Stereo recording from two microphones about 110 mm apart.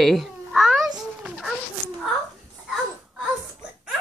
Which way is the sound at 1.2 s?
Centre (ahead or behind).